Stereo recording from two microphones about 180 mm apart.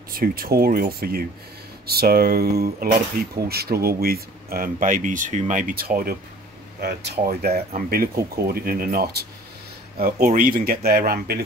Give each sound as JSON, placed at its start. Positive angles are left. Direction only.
{"t": 0.1, "sound": "speech", "side_deg": -55}
{"t": 6.8, "sound": "speech", "side_deg": -70}
{"t": 7.2, "sound": "speech", "side_deg": -55}